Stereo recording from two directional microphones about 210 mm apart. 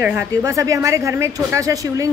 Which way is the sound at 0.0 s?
10° right (ahead or behind).